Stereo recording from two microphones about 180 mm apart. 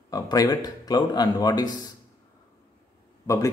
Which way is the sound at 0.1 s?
20° left (ahead or behind).